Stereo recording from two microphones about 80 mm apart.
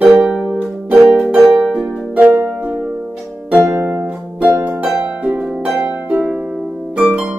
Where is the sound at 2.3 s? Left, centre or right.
Right.